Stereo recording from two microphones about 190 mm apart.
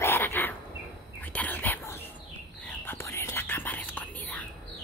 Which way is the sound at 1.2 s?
10° left (ahead or behind).